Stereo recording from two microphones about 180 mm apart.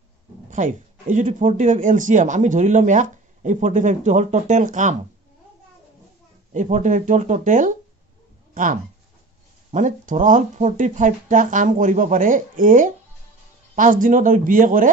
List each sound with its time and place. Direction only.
0.5 s speech: 45° right (ahead or behind)
6.5 s speech: 45° right (ahead or behind)
9.7 s speech: 45° right (ahead or behind)